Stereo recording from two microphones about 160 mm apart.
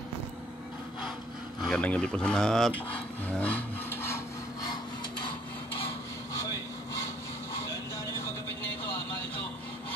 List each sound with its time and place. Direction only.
1.6 s speech: 5° left (ahead or behind)
3.3 s wood: 10° left (ahead or behind)